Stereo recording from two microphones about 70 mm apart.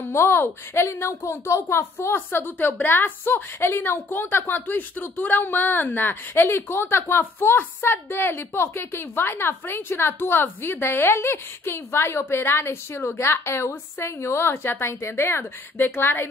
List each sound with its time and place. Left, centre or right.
0.1 s a woman's voice: left